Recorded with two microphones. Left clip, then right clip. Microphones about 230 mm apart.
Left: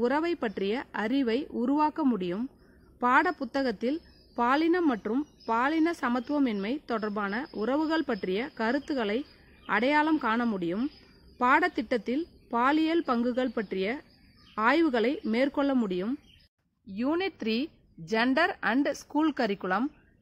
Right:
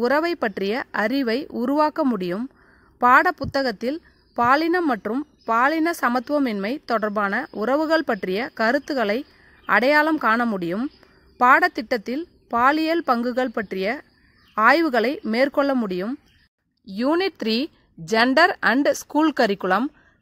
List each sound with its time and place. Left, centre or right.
0.0 s a woman's voice: right